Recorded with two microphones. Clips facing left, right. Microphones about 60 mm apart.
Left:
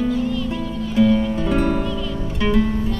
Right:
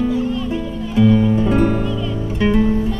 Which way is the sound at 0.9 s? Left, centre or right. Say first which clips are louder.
Right 3 dB; centre.